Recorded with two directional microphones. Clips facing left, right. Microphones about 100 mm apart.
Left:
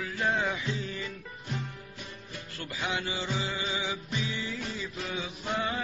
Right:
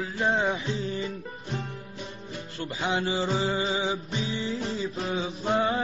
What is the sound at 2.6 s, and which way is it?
A man's voice, 25° right (ahead or behind).